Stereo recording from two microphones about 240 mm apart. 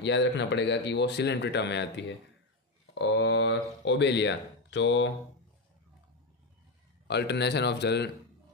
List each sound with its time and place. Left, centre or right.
0.0 s speech: left
7.1 s speech: left